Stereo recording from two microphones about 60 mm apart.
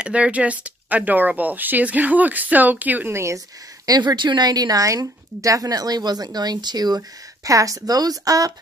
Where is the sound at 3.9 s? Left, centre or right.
Right.